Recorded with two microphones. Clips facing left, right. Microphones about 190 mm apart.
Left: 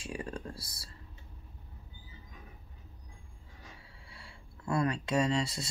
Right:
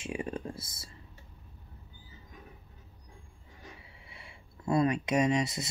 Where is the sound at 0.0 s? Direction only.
20° right (ahead or behind).